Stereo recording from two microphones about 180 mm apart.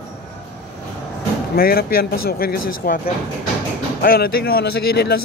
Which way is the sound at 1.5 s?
55° left (ahead or behind).